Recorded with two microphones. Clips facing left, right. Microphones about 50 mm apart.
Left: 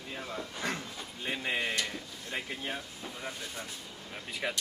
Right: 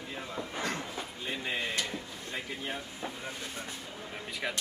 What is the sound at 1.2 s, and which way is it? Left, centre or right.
Speech, centre.